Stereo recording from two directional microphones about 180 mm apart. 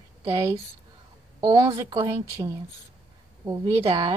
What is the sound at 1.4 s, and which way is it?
Speech, 20° right (ahead or behind).